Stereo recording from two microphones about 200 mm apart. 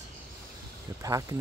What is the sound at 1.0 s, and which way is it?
Speech, 15° right (ahead or behind).